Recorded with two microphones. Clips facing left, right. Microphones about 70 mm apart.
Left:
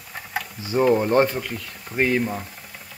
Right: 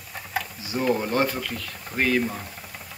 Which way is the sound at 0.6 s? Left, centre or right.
Left.